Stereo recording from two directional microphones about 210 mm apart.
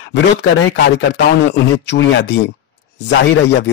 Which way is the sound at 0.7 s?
55° left (ahead or behind).